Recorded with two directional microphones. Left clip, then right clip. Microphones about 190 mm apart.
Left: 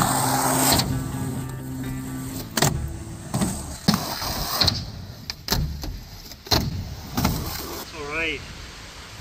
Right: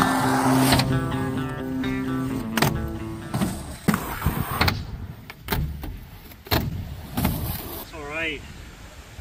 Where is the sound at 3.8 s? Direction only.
55° left (ahead or behind).